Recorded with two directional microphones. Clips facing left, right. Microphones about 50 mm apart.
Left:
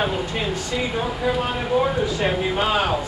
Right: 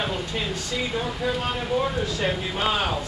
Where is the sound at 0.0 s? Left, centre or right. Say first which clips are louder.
Left 4 dB; centre.